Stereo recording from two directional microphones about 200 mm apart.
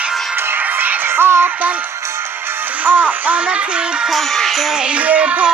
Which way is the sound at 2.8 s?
10° right (ahead or behind).